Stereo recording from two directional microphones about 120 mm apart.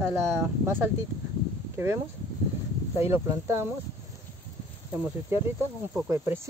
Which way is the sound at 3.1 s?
25° right (ahead or behind).